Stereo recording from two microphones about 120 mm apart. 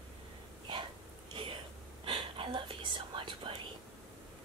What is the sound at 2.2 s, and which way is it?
Whispering, 45° right (ahead or behind).